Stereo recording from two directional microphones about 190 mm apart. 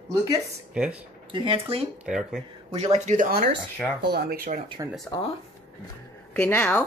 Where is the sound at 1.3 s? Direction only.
30° right (ahead or behind).